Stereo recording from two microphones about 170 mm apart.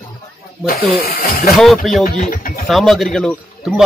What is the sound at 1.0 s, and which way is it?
Speech, 60° left (ahead or behind).